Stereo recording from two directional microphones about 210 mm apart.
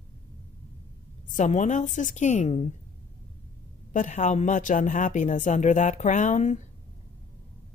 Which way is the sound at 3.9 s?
35° left (ahead or behind).